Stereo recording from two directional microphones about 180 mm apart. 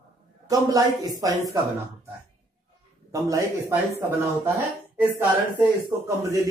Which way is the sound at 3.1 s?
20° right (ahead or behind).